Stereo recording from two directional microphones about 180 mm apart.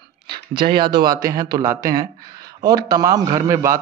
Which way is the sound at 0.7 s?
25° right (ahead or behind).